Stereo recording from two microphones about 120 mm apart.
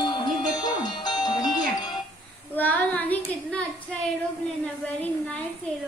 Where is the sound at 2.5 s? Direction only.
15° left (ahead or behind).